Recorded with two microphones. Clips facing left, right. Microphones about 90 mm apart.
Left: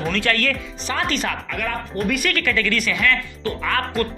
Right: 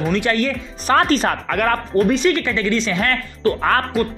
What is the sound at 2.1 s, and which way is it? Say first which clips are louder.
Speech: right 5 dB; 25° right (ahead or behind).